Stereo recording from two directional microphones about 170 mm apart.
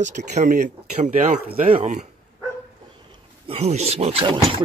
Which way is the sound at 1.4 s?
60° right (ahead or behind).